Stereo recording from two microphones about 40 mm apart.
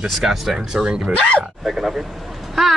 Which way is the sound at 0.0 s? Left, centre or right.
Centre.